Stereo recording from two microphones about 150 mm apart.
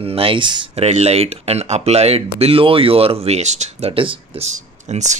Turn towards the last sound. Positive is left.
turn(degrees=-50)  # may be behind; listen again after turning